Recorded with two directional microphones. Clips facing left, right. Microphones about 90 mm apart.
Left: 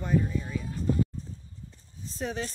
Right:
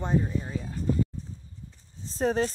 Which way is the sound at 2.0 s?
35° right (ahead or behind).